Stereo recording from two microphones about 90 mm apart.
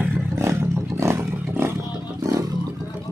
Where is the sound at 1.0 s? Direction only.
30° right (ahead or behind).